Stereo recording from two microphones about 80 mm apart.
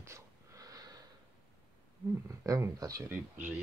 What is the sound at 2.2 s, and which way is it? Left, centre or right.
Speech, right.